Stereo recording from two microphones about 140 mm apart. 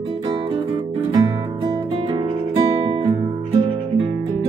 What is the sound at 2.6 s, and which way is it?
Music, 40° right (ahead or behind).